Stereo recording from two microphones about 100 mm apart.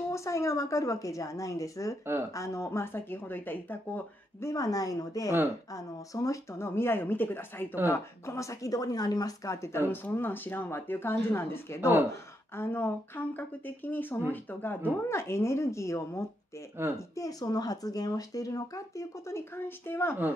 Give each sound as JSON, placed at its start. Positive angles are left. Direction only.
{"t": 0.1, "sound": "speech", "side_deg": 30}
{"t": 4.5, "sound": "speech", "side_deg": 35}